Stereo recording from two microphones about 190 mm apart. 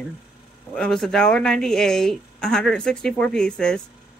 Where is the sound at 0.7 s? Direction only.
5° left (ahead or behind).